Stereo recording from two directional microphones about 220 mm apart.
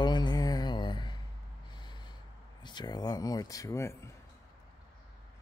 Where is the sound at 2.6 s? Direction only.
20° left (ahead or behind).